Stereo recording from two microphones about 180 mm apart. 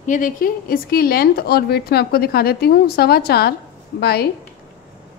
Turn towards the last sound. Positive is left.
turn(degrees=60)  # may be behind; listen again after turning